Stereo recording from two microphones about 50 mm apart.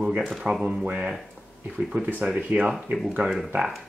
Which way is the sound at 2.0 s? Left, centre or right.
Right.